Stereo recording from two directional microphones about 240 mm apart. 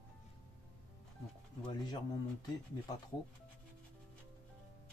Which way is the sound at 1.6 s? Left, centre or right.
Centre.